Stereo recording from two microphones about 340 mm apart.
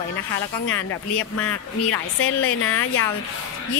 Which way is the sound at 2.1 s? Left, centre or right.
Left.